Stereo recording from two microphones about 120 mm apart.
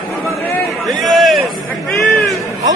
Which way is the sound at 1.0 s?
Centre (ahead or behind).